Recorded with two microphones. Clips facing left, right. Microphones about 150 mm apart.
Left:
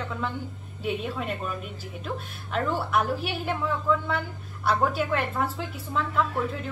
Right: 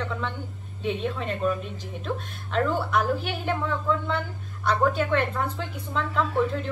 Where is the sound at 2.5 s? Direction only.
5° left (ahead or behind).